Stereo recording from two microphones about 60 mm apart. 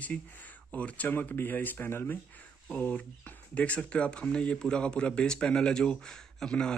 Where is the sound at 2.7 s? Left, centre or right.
Left.